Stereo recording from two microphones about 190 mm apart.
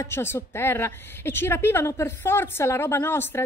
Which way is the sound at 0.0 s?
15° left (ahead or behind).